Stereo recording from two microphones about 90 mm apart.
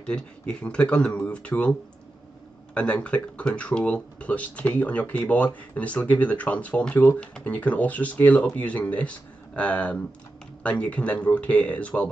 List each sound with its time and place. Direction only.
0.0 s speech: 10° left (ahead or behind)